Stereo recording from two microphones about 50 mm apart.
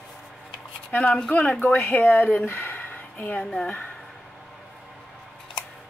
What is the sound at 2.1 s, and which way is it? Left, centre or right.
Speech, left.